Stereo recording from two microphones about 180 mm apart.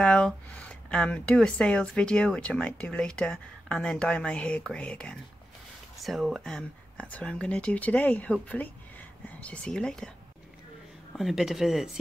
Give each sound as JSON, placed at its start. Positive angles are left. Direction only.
{"t": 0.0, "sound": "speech", "side_deg": 5}
{"t": 11.1, "sound": "speech", "side_deg": 0}